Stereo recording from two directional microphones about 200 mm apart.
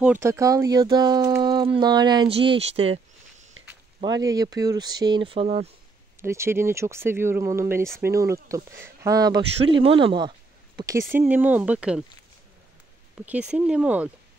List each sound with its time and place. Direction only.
0.0 s speech: 10° right (ahead or behind); by 3.4 s 30° right (ahead or behind)
4.0 s speech: 20° right (ahead or behind)
6.2 s speech: 15° right (ahead or behind)
13.1 s speech: 5° right (ahead or behind)